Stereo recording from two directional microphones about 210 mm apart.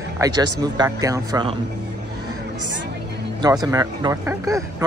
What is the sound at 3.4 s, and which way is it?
Speech, 15° right (ahead or behind).